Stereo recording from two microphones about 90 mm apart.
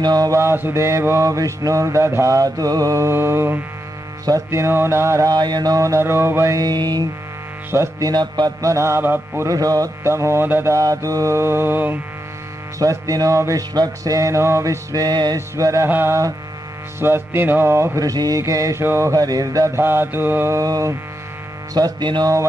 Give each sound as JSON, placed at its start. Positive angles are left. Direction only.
{"t": 0.0, "sound": "mantra", "side_deg": -45}
{"t": 0.4, "sound": "mantra", "side_deg": -25}
{"t": 5.3, "sound": "mantra", "side_deg": -50}
{"t": 9.5, "sound": "mantra", "side_deg": -40}
{"t": 12.7, "sound": "mantra", "side_deg": -35}
{"t": 15.3, "sound": "mantra", "side_deg": -35}
{"t": 20.5, "sound": "mantra", "side_deg": -40}
{"t": 21.8, "sound": "mantra", "side_deg": -50}
{"t": 22.2, "sound": "mantra", "side_deg": -35}